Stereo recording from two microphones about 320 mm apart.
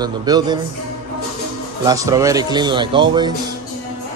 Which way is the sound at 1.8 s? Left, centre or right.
Centre.